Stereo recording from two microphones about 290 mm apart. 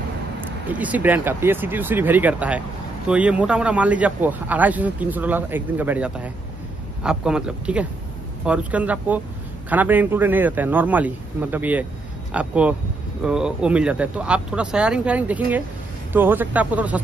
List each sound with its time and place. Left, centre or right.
0.7 s a man's voice: centre